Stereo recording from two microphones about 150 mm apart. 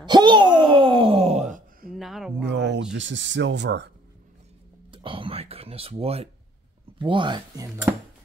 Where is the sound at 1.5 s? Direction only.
70° right (ahead or behind).